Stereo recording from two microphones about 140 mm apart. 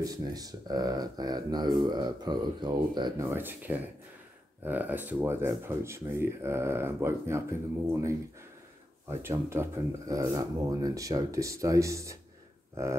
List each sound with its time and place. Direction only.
0.0 s speech: 25° right (ahead or behind)
3.3 s speech: 15° right (ahead or behind)
9.2 s speech: 15° right (ahead or behind)